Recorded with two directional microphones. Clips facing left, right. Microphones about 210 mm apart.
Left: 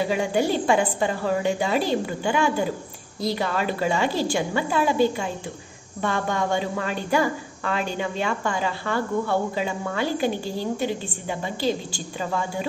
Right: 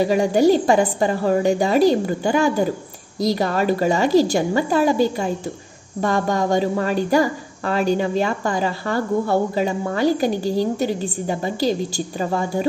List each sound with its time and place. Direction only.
0.1 s a woman's voice: 40° right (ahead or behind)